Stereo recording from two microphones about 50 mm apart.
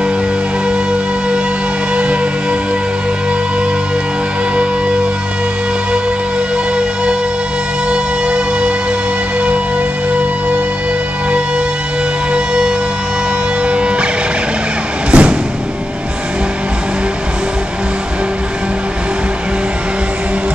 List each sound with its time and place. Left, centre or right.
4.6 s music: right
7.9 s music: centre
13.7 s music: right
15.0 s music: right